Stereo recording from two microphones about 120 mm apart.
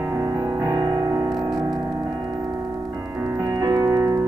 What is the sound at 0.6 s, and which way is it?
Music, 35° right (ahead or behind).